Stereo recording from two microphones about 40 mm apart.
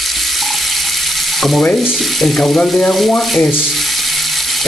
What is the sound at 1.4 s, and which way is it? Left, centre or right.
Frying, centre.